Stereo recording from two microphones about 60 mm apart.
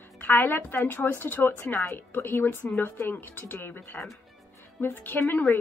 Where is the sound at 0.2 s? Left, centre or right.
Left.